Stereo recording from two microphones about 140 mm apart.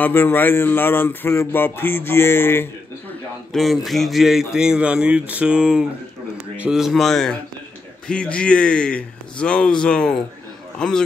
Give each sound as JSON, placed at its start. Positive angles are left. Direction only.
{"t": 0.0, "sound": "speech", "side_deg": 15}
{"t": 3.5, "sound": "speech", "side_deg": 0}